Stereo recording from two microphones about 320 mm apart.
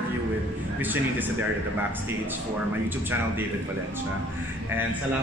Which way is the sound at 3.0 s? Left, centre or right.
Centre.